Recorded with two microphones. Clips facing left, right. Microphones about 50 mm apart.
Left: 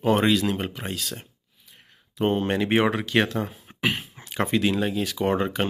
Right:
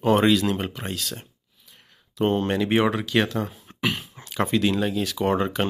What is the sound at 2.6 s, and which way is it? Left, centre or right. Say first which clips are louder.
Speech: even; left.